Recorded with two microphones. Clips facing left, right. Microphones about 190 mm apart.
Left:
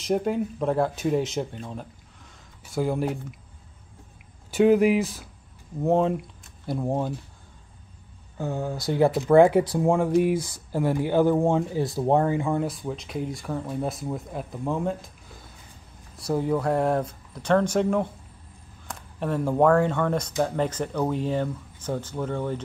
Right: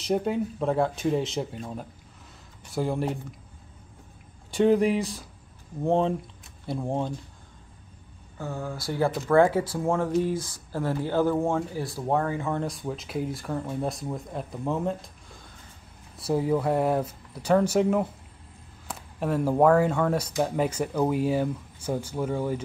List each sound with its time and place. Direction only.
0.0 s speech: centre (ahead or behind)
4.5 s speech: 5° left (ahead or behind)
8.4 s speech: 20° left (ahead or behind)
12.4 s speech: 10° left (ahead or behind)
16.2 s speech: 5° right (ahead or behind)